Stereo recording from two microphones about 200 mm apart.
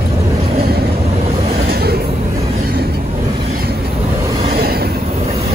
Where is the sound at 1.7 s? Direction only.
50° right (ahead or behind).